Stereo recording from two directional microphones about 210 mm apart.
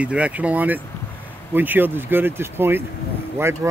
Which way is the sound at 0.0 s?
5° right (ahead or behind).